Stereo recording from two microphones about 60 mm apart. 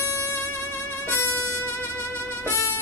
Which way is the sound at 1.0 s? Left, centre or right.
Left.